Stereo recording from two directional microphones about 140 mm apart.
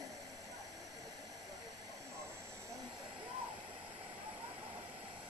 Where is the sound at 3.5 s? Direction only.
35° right (ahead or behind).